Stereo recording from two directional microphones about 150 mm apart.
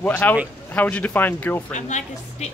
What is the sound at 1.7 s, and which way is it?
Speech, 50° left (ahead or behind).